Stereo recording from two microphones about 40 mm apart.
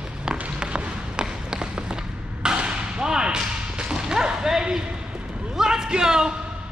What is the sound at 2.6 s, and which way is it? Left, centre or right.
Whip, right.